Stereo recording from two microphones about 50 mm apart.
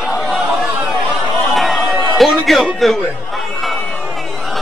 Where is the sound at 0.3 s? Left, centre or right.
Centre.